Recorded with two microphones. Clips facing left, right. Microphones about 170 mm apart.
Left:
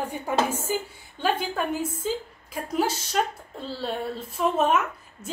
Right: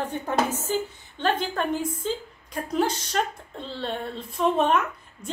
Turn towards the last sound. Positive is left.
turn(degrees=5)  # may be behind; listen again after turning